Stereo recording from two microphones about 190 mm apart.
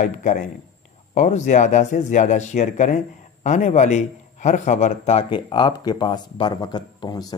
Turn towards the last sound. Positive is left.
turn(degrees=20)  # may be behind; listen again after turning